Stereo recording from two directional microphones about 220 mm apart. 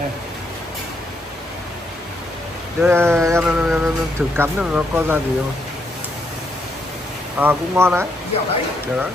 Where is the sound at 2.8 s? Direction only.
10° right (ahead or behind).